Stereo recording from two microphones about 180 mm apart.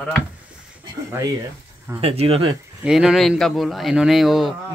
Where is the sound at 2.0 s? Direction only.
35° right (ahead or behind).